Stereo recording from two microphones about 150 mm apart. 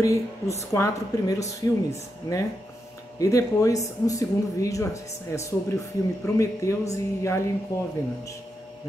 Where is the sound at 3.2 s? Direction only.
20° left (ahead or behind).